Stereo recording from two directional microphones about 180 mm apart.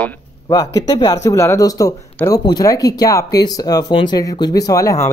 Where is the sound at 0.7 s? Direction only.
20° left (ahead or behind).